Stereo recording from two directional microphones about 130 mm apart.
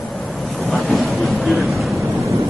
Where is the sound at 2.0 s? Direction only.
20° right (ahead or behind).